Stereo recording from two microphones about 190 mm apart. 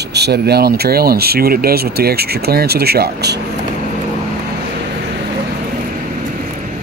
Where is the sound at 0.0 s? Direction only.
60° right (ahead or behind).